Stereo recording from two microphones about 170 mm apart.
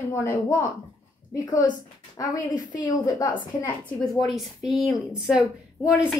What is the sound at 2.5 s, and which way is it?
Speech, 50° left (ahead or behind).